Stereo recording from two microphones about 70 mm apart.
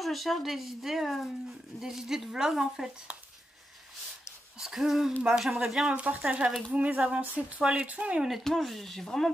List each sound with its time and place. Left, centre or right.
0.0 s speech: centre
4.6 s speech: centre
5.9 s speech: centre
8.3 s speech: centre